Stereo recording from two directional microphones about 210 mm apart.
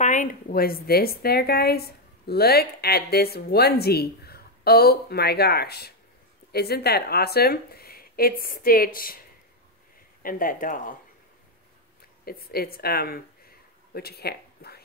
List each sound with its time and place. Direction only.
0.0 s a woman's voice: 35° left (ahead or behind)
10.2 s speech: 40° left (ahead or behind)
12.3 s speech: 45° left (ahead or behind)